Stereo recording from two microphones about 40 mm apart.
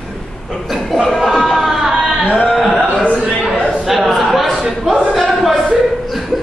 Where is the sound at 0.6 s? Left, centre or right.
Centre.